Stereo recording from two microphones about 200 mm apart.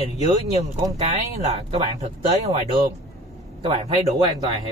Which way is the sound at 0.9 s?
35° right (ahead or behind).